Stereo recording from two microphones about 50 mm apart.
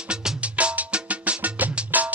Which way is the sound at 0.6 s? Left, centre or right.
Right.